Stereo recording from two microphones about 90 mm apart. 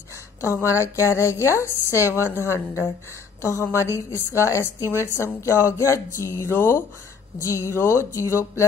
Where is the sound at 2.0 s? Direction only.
25° right (ahead or behind).